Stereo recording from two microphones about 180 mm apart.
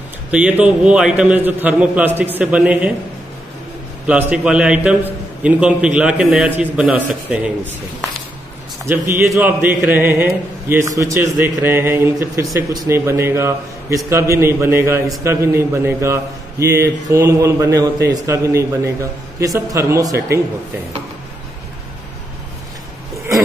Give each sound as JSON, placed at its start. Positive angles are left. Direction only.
{"t": 0.3, "sound": "a man's voice", "side_deg": -5}
{"t": 4.1, "sound": "a man's voice", "side_deg": -5}
{"t": 8.8, "sound": "a man's voice", "side_deg": -10}